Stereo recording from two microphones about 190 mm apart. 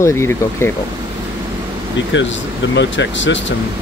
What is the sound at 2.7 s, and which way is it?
Speech, 70° left (ahead or behind).